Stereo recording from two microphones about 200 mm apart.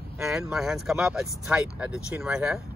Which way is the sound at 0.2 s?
Centre (ahead or behind).